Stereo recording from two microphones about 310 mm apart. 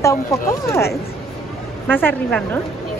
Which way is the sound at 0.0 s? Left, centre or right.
Centre.